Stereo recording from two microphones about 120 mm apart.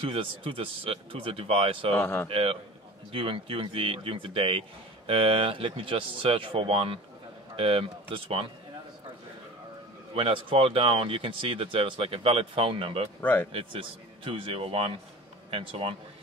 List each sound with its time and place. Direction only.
0.0 s speech: 45° right (ahead or behind)
2.0 s speech: 15° left (ahead or behind)
2.2 s speech: 50° right (ahead or behind)
10.1 s speech: 45° right (ahead or behind)
13.2 s speech: 15° left (ahead or behind)
13.5 s speech: 50° right (ahead or behind)